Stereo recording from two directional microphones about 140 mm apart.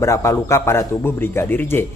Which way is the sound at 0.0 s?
20° left (ahead or behind).